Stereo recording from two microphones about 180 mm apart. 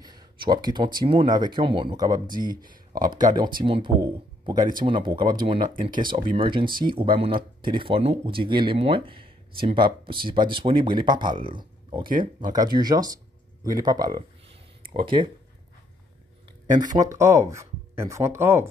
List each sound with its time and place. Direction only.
0.0 s a sound: 25° right (ahead or behind)
0.9 s speech: 25° right (ahead or behind)
16.9 s speech: 20° right (ahead or behind)